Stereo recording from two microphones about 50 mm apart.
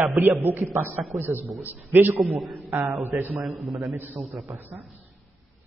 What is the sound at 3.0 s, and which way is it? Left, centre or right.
Speech, right.